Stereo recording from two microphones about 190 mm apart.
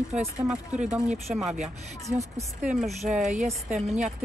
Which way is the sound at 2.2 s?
15° right (ahead or behind).